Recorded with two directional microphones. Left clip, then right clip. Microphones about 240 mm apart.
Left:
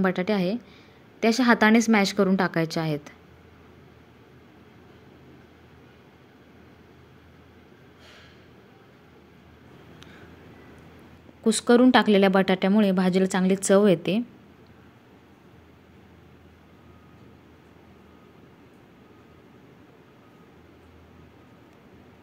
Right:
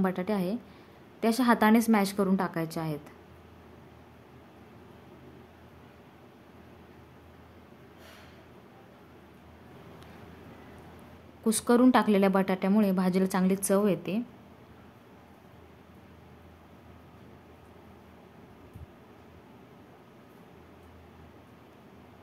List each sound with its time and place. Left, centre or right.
0.0 s speech: centre
11.4 s speech: centre